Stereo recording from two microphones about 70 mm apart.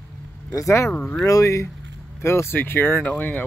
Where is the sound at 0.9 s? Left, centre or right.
Left.